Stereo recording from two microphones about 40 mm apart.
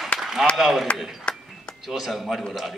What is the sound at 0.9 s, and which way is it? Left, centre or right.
A man's voice, centre.